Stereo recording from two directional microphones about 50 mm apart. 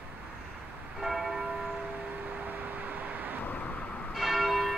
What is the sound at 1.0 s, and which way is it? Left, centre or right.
Church bell, centre.